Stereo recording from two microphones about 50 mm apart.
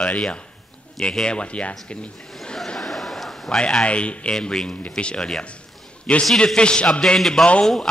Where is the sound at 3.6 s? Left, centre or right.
Centre.